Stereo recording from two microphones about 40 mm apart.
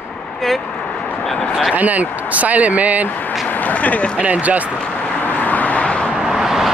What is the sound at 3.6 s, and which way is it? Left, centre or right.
Speech, left.